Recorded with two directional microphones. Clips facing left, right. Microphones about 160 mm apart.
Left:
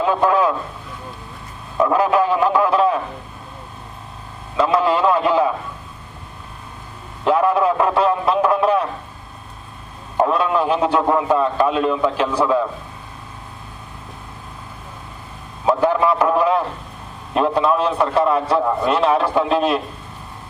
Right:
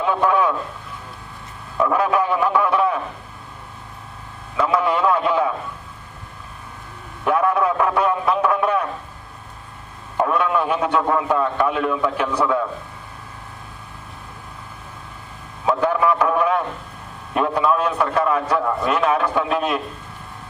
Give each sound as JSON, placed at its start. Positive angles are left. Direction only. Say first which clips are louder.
{"t": 0.0, "sound": "a man's voice", "louder": "left 2 dB", "side_deg": 25}
{"t": 1.8, "sound": "a man's voice", "louder": "left 3 dB", "side_deg": 20}
{"t": 4.6, "sound": "a man's voice", "louder": "left 2 dB", "side_deg": 25}
{"t": 7.2, "sound": "a man's voice", "louder": "left 3 dB", "side_deg": 20}
{"t": 10.1, "sound": "a man's voice", "louder": "left 2 dB", "side_deg": 25}
{"t": 15.6, "sound": "a sound", "louder": "left 2 dB", "side_deg": 25}
{"t": 16.3, "sound": "radio", "louder": "left 2 dB", "side_deg": 25}
{"t": 17.3, "sound": "a man's voice", "louder": "left 2 dB", "side_deg": 25}